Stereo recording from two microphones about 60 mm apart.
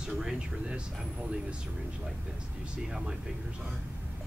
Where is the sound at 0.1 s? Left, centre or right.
Centre.